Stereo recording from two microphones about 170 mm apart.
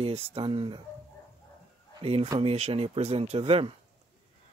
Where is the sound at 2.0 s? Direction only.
35° right (ahead or behind).